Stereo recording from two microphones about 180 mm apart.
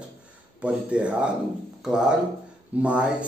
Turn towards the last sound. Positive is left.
turn(degrees=-5)  # may be behind; listen again after turning